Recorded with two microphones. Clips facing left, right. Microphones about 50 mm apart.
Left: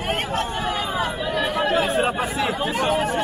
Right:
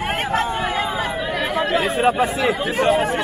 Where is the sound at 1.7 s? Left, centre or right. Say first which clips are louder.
Even; right.